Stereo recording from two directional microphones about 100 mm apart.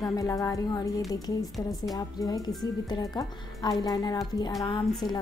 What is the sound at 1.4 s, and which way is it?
Speech, centre (ahead or behind).